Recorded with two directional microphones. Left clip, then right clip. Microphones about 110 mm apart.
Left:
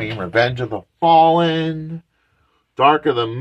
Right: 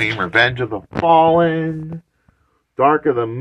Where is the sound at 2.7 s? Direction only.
10° left (ahead or behind).